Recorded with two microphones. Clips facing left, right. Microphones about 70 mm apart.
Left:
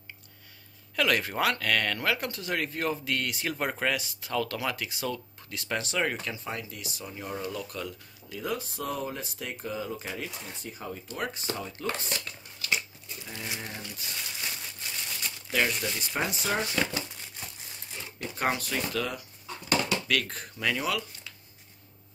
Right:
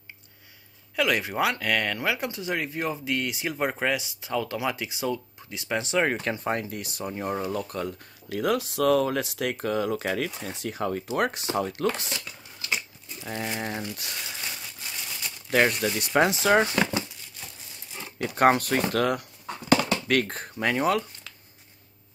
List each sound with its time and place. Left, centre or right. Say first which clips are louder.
0.9 s speech: right 2 dB; centre
6.2 s speech: right 8 dB; right
8.3 s speech: right 8 dB; right
12.1 s dishes: even; centre
13.3 s speech: right 8 dB; right
15.5 s speech: right 6 dB; right
16.2 s speech: right 10 dB; right
18.2 s speech: right 9 dB; right
19.7 s speech: right 5 dB; right